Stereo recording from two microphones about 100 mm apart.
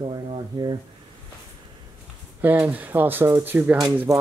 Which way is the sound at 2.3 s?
20° right (ahead or behind).